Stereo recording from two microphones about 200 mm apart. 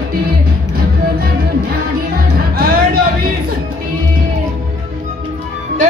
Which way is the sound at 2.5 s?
50° right (ahead or behind).